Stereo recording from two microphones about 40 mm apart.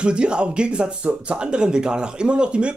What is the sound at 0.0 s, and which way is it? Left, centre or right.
Speech, right.